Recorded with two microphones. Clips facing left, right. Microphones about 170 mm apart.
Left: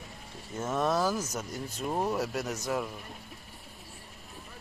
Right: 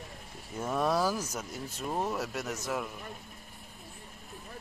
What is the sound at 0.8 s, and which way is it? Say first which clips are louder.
Speech: left 1 dB; 10° right (ahead or behind).